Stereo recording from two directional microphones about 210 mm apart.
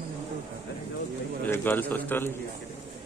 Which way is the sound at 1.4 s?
10° left (ahead or behind).